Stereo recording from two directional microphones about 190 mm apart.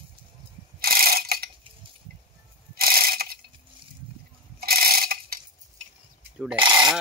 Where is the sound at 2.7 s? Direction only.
50° right (ahead or behind).